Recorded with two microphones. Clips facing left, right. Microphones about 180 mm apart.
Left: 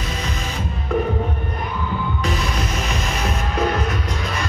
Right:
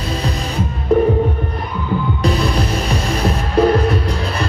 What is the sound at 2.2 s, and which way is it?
Music, 35° right (ahead or behind).